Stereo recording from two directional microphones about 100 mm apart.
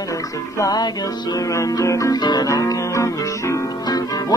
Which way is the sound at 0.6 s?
40° left (ahead or behind).